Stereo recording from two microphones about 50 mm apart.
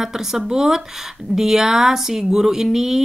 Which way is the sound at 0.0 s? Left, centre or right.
Centre.